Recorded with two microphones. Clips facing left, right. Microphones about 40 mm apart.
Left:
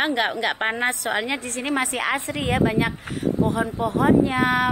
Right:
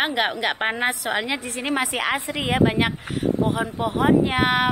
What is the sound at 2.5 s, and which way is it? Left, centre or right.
Speech, right.